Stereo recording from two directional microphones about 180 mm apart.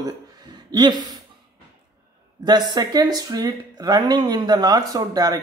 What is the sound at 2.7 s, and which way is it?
Speech, 20° right (ahead or behind).